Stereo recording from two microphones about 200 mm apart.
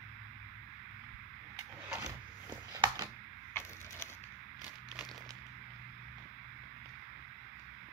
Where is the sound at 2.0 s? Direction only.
20° right (ahead or behind).